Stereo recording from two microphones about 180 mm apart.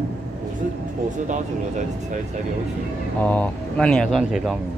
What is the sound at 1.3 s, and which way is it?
Speech, 45° right (ahead or behind).